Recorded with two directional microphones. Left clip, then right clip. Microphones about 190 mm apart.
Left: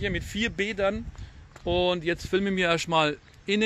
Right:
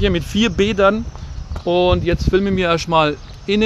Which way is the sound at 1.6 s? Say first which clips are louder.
Right 9 dB; 50° left (ahead or behind).